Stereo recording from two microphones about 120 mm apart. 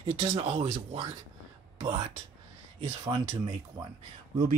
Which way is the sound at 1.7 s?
35° right (ahead or behind).